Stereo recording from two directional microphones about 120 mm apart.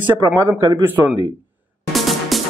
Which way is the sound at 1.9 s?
Centre (ahead or behind).